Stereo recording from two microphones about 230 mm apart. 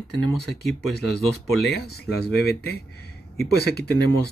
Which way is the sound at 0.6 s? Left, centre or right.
Left.